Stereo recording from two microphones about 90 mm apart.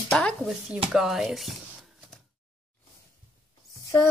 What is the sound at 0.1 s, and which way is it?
Speech, 10° left (ahead or behind).